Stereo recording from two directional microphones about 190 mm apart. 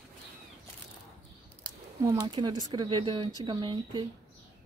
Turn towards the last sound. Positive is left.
turn(degrees=-25)  # may be behind; listen again after turning